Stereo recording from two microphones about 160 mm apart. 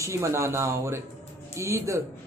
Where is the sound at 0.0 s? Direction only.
20° right (ahead or behind).